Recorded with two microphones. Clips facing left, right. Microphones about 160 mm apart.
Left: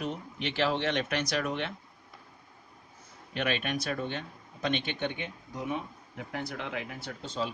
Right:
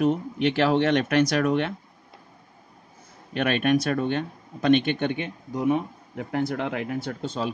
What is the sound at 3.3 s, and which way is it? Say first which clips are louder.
Speech: right 9 dB; 55° right (ahead or behind).